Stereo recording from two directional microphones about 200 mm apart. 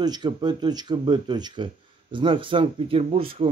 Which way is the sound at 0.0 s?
20° right (ahead or behind).